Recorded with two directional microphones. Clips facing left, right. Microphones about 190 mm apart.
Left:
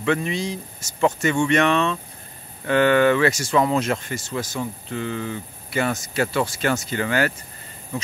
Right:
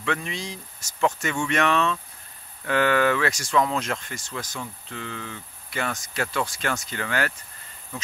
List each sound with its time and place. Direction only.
0.0 s speech: 5° left (ahead or behind)